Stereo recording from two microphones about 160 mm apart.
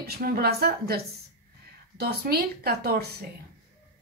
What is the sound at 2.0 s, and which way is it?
A woman's voice, 75° right (ahead or behind).